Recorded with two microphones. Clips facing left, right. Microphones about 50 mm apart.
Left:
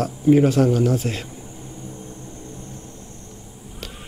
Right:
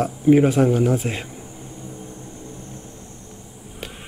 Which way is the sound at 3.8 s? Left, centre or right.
Centre.